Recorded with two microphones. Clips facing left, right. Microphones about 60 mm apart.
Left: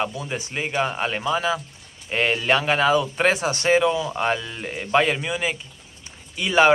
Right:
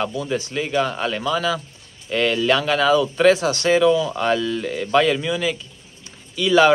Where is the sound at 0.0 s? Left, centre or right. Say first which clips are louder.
Right 3 dB; left.